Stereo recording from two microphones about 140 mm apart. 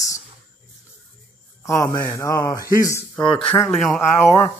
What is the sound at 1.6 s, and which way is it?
Speech, 20° left (ahead or behind).